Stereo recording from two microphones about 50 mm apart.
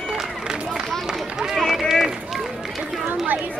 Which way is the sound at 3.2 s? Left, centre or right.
Right.